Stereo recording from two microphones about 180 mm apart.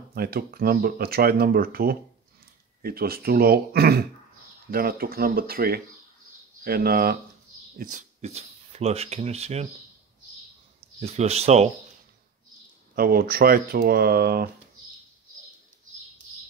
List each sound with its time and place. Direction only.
0.1 s speech: 55° right (ahead or behind)
8.2 s speech: 35° right (ahead or behind)
11.0 s speech: 35° right (ahead or behind)
12.9 s speech: 55° right (ahead or behind)